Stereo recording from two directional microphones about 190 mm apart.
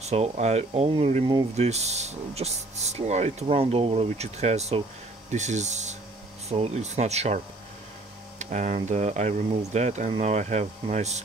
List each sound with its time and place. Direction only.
0.0 s speech: 35° right (ahead or behind)